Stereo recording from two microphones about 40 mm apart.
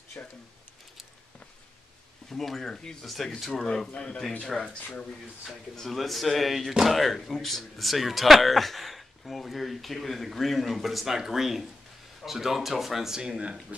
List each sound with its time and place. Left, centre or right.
0.2 s speech: left
2.2 s speech: centre
2.7 s speech: centre
3.1 s speech: centre
3.6 s speech: centre
3.9 s speech: left
4.4 s speech: centre
5.8 s speech: centre
13.4 s speech: right